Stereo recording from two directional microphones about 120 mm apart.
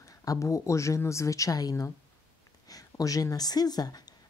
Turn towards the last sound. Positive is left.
turn(degrees=35)  # may be behind; listen again after turning